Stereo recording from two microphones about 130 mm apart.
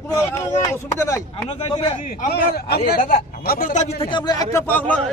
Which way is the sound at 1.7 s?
40° left (ahead or behind).